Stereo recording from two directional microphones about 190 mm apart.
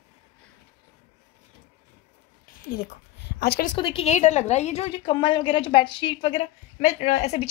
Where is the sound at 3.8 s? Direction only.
30° left (ahead or behind).